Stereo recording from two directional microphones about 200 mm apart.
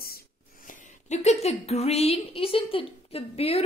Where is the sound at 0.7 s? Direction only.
35° left (ahead or behind).